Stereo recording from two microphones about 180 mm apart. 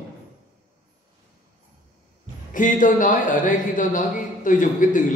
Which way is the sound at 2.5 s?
45° left (ahead or behind).